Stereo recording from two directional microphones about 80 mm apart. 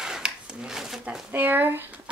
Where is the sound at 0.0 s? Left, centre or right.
Centre.